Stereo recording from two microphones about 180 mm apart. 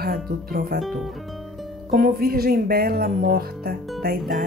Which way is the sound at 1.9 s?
55° right (ahead or behind).